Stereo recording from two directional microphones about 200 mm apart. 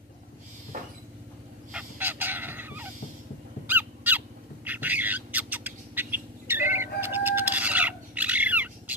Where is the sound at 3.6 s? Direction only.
10° right (ahead or behind).